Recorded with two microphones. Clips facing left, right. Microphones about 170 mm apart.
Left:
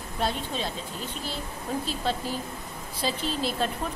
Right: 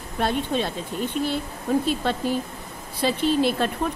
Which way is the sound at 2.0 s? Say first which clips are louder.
Right 5 dB; 60° right (ahead or behind).